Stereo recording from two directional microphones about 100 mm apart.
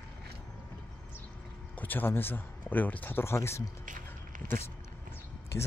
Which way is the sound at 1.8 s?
20° left (ahead or behind).